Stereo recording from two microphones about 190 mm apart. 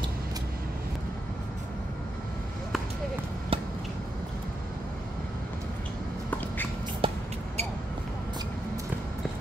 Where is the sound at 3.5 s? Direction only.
30° right (ahead or behind).